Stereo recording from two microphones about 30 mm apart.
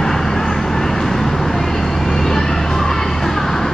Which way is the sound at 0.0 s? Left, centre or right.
Centre.